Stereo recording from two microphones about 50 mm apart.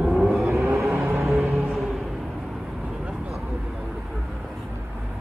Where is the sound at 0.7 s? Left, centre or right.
Right.